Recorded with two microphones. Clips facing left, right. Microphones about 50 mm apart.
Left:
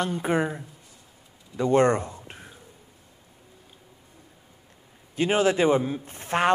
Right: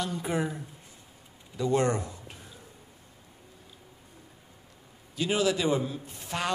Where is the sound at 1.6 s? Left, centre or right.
Left.